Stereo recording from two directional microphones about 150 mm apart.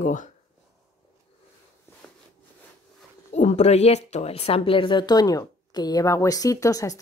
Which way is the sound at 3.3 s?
50° left (ahead or behind).